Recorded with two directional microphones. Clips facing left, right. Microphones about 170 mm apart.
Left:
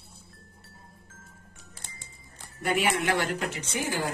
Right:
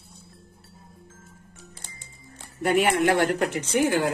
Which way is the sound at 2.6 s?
50° right (ahead or behind).